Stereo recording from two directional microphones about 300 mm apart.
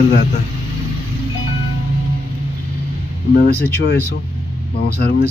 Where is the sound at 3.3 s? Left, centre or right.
Left.